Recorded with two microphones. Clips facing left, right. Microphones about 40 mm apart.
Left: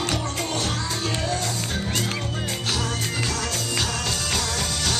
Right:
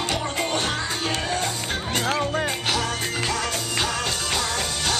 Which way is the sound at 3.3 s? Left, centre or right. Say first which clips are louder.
Right 1 dB; right.